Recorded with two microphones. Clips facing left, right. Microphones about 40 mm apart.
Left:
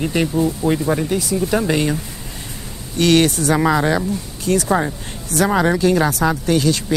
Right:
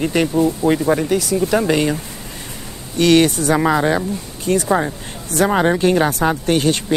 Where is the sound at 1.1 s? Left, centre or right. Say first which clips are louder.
Right 2 dB; right.